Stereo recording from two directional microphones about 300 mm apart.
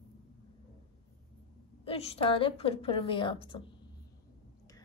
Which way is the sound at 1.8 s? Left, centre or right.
Centre.